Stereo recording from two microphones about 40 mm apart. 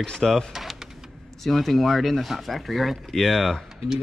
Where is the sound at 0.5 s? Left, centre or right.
Centre.